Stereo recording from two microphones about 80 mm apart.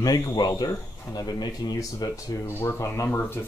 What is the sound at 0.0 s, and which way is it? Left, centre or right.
Speech, left.